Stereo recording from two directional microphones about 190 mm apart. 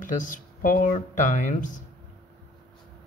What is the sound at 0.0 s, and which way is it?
Speech, 45° left (ahead or behind).